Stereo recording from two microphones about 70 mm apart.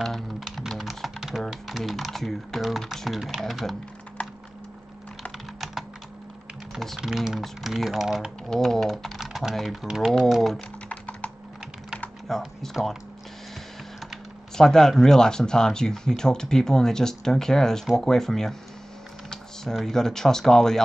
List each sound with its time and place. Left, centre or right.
0.0 s typing: centre
4.2 s a sound: centre
6.7 s typing: centre
7.0 s speech: centre
8.5 s speech: centre
10.9 s typing: centre
12.3 s speech: centre
14.6 s speech: centre